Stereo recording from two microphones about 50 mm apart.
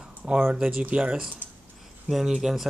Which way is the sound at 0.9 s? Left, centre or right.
Right.